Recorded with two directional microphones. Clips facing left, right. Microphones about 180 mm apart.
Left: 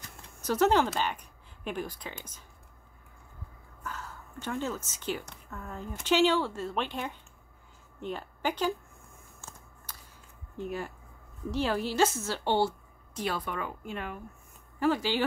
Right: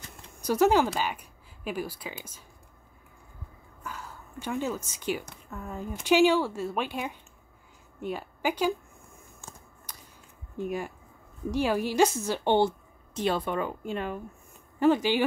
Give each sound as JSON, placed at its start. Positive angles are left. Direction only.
{"t": 0.4, "sound": "speech", "side_deg": -10}
{"t": 3.8, "sound": "a woman's voice", "side_deg": -10}
{"t": 9.4, "sound": "a sound", "side_deg": -15}
{"t": 10.6, "sound": "a woman's voice", "side_deg": -15}